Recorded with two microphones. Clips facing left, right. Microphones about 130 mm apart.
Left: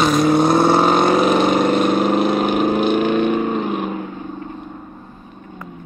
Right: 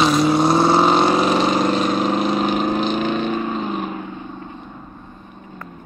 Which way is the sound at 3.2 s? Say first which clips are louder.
Left 4 dB; 15° left (ahead or behind).